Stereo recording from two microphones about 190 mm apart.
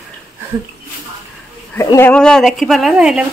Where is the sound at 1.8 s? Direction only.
15° left (ahead or behind); by 3.2 s 5° right (ahead or behind).